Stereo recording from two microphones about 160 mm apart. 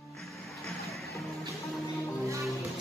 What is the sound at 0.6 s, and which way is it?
Music, centre (ahead or behind).